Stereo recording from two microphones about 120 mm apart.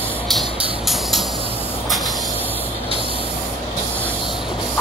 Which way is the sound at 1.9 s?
Centre (ahead or behind).